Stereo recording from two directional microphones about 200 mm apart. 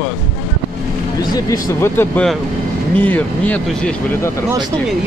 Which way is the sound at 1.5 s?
10° left (ahead or behind).